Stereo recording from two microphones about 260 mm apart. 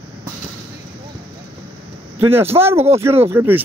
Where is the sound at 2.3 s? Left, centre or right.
Centre.